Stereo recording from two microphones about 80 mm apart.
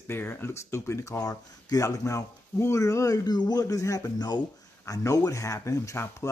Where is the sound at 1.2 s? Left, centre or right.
Left.